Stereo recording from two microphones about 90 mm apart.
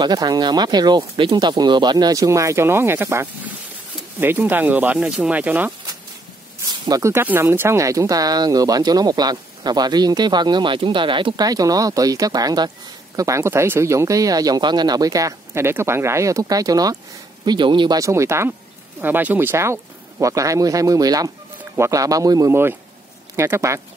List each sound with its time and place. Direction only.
0.0 s speech: 50° right (ahead or behind); by 5.7 s 20° right (ahead or behind)
7.0 s speech: 35° right (ahead or behind); by 11.3 s 65° right (ahead or behind)
11.3 s speech: 45° right (ahead or behind)
15.6 s speech: 25° right (ahead or behind); by 16.9 s 45° right (ahead or behind)
17.5 s speech: 60° right (ahead or behind)
17.9 s speech: 35° right (ahead or behind)
18.9 s speech: 20° right (ahead or behind); by 22.5 s 40° right (ahead or behind)
22.5 s speech: 25° right (ahead or behind)